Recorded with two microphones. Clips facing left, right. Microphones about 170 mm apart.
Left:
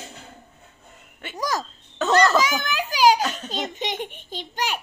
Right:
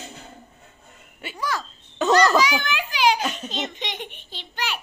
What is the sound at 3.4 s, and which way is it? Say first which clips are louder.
Baby laughter: left 1 dB; 10° left (ahead or behind).